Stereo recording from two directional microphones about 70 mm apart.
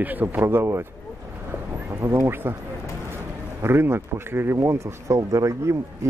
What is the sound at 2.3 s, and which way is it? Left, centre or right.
Speech, right.